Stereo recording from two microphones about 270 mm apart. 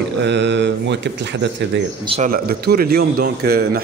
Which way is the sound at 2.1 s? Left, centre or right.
Right.